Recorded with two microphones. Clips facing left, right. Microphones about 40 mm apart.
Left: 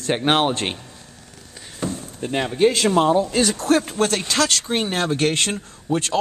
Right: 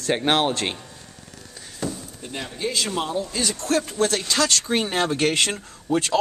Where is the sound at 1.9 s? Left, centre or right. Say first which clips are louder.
Left 7 dB; left.